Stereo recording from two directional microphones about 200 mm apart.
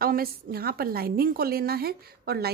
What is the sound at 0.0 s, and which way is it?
A woman's voice, 50° right (ahead or behind).